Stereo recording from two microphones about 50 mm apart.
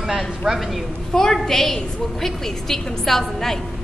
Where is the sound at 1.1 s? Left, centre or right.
Centre.